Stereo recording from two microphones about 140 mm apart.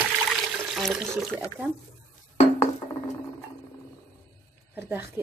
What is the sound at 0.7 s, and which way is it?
Speech, centre (ahead or behind).